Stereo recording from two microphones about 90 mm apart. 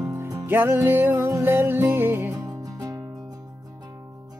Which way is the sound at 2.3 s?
40° right (ahead or behind).